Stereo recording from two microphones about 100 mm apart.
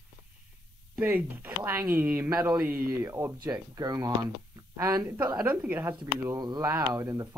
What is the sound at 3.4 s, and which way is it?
Speech, 35° right (ahead or behind).